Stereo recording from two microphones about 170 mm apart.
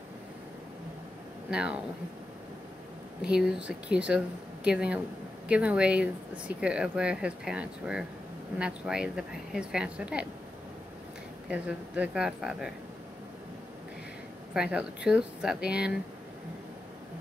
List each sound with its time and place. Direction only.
1.5 s a woman's voice: 5° right (ahead or behind)
3.2 s a woman's voice: 5° right (ahead or behind)
11.4 s a woman's voice: 5° right (ahead or behind)
14.5 s a woman's voice: 5° right (ahead or behind)